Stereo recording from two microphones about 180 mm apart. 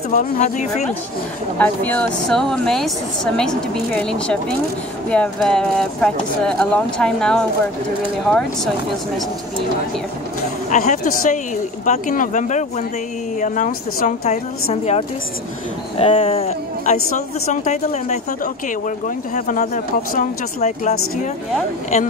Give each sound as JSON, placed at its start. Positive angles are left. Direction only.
{"t": 0.1, "sound": "speech", "side_deg": 45}
{"t": 1.6, "sound": "speech", "side_deg": 10}
{"t": 10.7, "sound": "speech", "side_deg": 45}
{"t": 14.2, "sound": "a woman's voice", "side_deg": 40}